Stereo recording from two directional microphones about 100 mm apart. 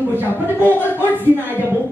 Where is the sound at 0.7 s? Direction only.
20° left (ahead or behind).